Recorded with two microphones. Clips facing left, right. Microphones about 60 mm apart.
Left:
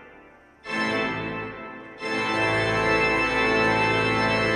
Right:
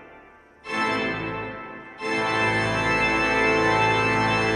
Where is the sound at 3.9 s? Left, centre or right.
Right.